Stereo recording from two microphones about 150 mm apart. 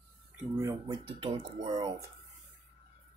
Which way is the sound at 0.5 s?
20° right (ahead or behind).